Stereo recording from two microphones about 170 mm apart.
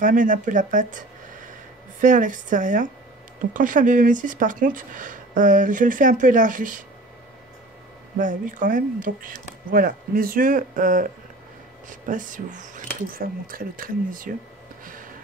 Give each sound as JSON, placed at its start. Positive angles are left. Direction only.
{"t": 0.0, "sound": "speech", "side_deg": -50}
{"t": 8.2, "sound": "speech", "side_deg": -50}